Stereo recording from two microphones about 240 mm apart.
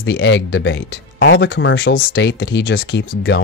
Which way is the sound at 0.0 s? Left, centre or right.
Left.